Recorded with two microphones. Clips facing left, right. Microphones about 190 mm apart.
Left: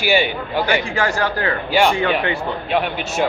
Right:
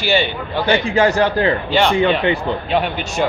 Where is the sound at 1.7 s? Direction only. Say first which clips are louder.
Left 4 dB; 10° left (ahead or behind).